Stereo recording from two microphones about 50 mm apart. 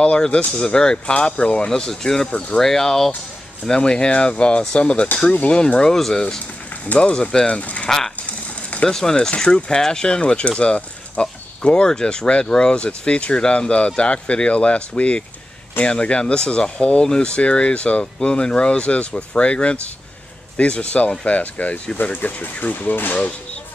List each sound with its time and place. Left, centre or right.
0.0 s speech: left
3.6 s speech: centre
5.9 s speech: centre
6.9 s speech: left
8.8 s speech: centre; by 23.2 s left